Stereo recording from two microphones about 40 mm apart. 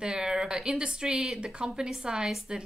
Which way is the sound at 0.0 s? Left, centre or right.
Centre.